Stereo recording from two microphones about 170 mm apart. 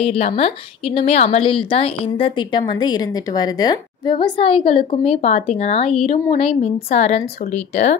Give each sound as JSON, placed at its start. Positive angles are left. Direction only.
{"t": 0.0, "sound": "a woman's voice", "side_deg": 35}